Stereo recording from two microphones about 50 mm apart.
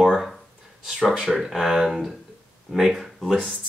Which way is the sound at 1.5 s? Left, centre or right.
Centre.